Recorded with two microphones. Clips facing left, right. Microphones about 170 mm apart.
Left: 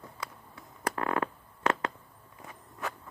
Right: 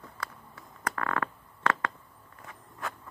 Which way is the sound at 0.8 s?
20° left (ahead or behind).